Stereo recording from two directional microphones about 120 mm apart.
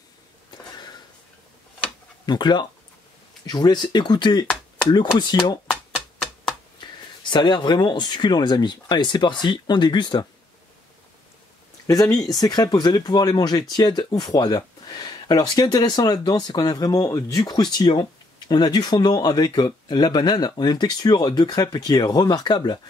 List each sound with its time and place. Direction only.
2.2 s speech: 40° left (ahead or behind)
7.2 s speech: 40° left (ahead or behind)
11.9 s speech: 30° left (ahead or behind)